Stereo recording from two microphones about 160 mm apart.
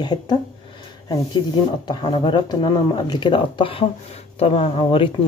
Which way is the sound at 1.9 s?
30° left (ahead or behind).